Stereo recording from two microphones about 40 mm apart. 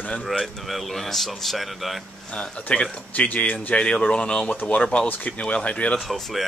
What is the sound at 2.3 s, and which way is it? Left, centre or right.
Speech, left.